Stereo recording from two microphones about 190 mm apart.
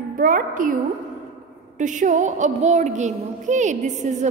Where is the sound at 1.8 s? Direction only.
40° right (ahead or behind).